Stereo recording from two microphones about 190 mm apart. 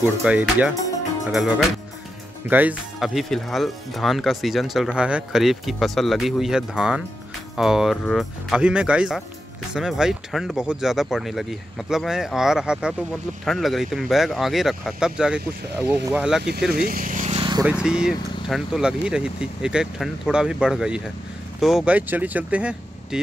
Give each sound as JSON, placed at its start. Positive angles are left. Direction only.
{"t": 0.2, "sound": "speech", "side_deg": -5}
{"t": 2.5, "sound": "speech", "side_deg": -10}
{"t": 16.7, "sound": "speech", "side_deg": -50}
{"t": 17.4, "sound": "vehicle", "side_deg": -25}
{"t": 17.6, "sound": "speech", "side_deg": -5}